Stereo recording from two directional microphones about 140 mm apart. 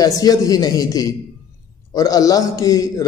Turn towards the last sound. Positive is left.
turn(degrees=25)  # may be behind; listen again after turning